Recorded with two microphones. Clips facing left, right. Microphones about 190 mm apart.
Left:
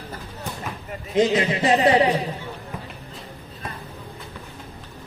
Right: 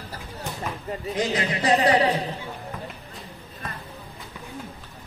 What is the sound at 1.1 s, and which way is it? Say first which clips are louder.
Speech: left 7 dB; 25° left (ahead or behind).